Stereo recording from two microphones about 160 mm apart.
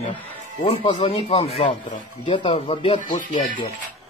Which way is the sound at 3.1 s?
55° left (ahead or behind).